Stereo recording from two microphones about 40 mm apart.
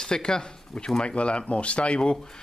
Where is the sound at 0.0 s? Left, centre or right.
Centre.